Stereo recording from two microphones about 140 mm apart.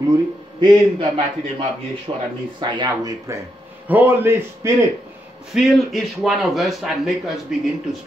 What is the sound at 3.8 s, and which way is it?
A man's voice, 15° right (ahead or behind).